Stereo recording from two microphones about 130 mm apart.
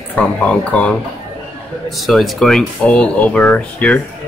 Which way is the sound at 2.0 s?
Centre (ahead or behind).